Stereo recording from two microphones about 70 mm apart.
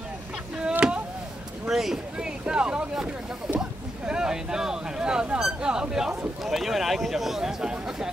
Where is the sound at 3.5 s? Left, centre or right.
Centre.